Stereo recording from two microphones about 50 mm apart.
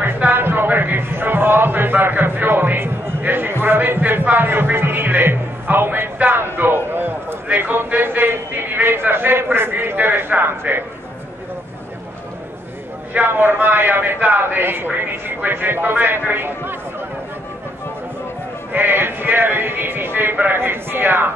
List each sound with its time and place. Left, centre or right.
0.0 s a sound: right
3.6 s a man's voice: right
13.2 s a man's voice: right
18.7 s a man's voice: right